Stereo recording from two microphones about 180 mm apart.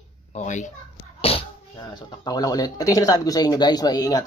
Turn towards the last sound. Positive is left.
turn(degrees=20)  # may be behind; listen again after turning